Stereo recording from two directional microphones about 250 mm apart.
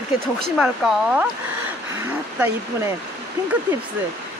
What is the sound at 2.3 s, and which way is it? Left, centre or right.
Speech, centre.